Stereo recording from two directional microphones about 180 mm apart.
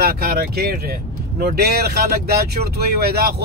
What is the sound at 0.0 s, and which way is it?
Speech, 60° right (ahead or behind).